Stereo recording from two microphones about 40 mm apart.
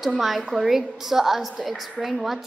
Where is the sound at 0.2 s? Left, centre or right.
Centre.